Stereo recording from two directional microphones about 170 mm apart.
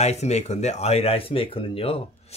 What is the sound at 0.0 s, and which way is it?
Speech, 40° left (ahead or behind).